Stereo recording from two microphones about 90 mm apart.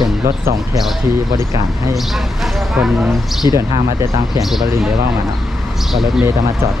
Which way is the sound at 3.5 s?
45° right (ahead or behind).